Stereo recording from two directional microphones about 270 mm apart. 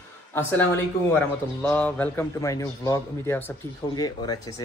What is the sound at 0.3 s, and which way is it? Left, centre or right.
A man's voice, centre.